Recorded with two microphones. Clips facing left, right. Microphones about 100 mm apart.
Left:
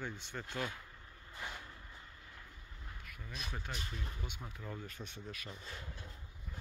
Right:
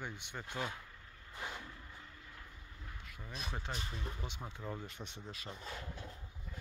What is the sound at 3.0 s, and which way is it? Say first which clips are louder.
Speech: right 1 dB; 25° right (ahead or behind).